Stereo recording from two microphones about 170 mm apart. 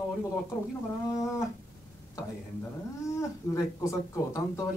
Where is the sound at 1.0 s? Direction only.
20° left (ahead or behind).